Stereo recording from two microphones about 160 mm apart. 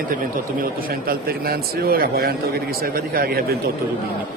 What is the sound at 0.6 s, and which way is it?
Speech, 70° right (ahead or behind).